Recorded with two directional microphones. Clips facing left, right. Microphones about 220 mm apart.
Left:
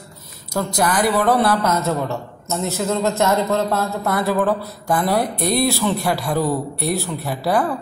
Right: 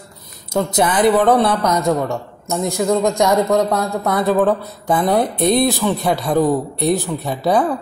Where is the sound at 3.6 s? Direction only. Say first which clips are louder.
Right 3 dB; 5° left (ahead or behind).